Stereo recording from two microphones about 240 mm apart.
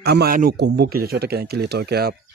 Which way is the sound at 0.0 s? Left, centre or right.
Right.